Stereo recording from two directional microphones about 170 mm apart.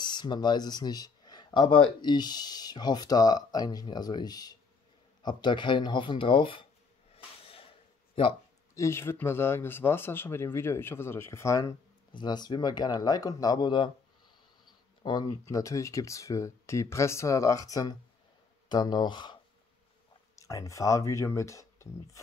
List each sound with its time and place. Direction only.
0.0 s speech: 25° left (ahead or behind)
7.2 s a sound: 35° left (ahead or behind)
8.7 s speech: 15° left (ahead or behind)
20.3 s speech: 20° left (ahead or behind)